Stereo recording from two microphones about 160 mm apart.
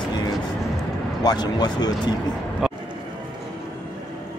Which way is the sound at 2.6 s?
Centre (ahead or behind).